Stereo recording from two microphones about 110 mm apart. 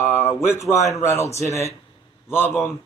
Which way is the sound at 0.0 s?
20° left (ahead or behind).